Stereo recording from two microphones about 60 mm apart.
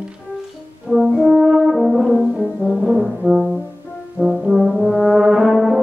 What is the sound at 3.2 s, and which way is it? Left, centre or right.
Brass instrument, right.